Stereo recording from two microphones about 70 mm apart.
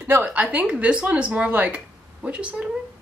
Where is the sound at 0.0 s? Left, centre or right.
Right.